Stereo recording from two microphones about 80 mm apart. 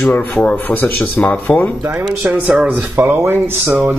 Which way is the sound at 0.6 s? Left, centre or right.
Left.